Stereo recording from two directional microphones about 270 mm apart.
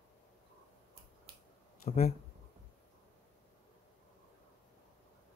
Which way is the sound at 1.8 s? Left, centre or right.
Left.